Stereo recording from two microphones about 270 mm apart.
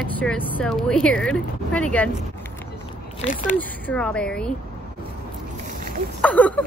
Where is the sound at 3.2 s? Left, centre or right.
Left.